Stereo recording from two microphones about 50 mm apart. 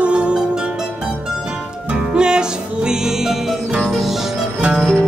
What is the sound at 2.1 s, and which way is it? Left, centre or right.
Music, centre.